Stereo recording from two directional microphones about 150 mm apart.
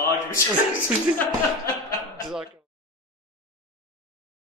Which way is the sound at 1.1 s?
60° left (ahead or behind).